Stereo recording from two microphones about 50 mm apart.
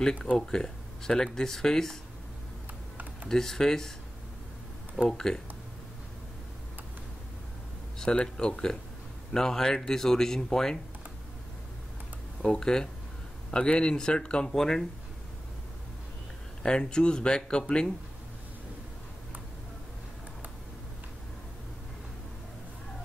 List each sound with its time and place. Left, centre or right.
0.1 s speech: left
3.3 s speech: centre
5.1 s speech: centre
8.0 s speech: centre
12.4 s speech: centre
16.6 s speech: centre